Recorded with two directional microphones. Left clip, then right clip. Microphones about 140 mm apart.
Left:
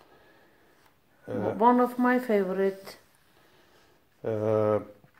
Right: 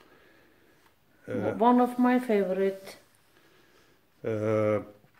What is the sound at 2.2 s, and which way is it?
Speech, 25° right (ahead or behind).